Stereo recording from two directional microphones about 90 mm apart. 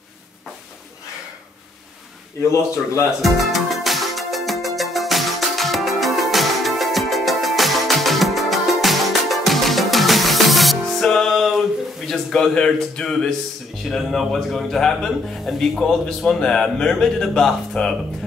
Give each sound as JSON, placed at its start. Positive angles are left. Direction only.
{"t": 2.4, "sound": "speech", "side_deg": 35}
{"t": 3.1, "sound": "music", "side_deg": 0}
{"t": 12.1, "sound": "speech", "side_deg": 5}